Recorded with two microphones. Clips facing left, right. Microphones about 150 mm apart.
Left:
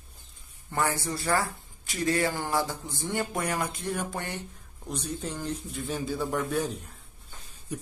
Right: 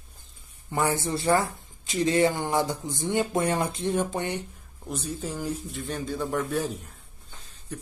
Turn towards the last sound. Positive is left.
turn(degrees=10)  # may be behind; listen again after turning